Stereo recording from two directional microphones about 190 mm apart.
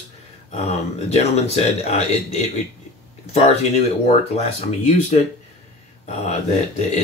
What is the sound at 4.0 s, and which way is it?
Speech, 35° left (ahead or behind).